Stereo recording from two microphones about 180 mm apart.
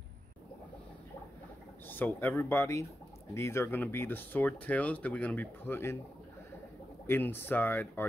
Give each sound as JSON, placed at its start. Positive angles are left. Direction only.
{"t": 1.9, "sound": "speech", "side_deg": 10}
{"t": 7.1, "sound": "speech", "side_deg": 10}